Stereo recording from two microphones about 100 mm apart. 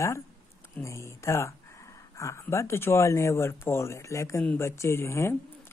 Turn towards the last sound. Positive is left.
turn(degrees=25)  # may be behind; listen again after turning